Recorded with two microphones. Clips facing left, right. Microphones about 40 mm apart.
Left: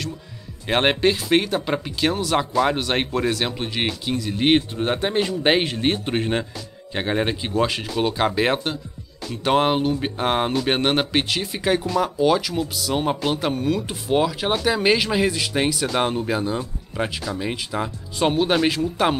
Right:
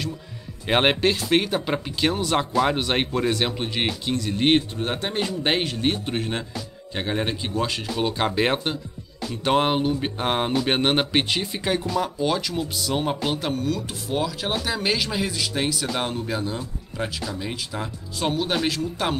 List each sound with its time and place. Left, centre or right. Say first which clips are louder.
0.7 s speech: left 1 dB; centre
4.6 s speech: left 3 dB; centre
7.9 s speech: left 2 dB; centre
13.5 s speech: left 3 dB; centre